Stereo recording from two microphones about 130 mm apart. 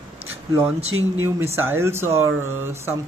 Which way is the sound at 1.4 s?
20° right (ahead or behind).